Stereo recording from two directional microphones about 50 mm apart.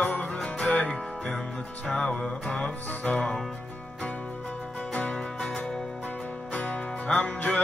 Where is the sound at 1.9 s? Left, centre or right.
Centre.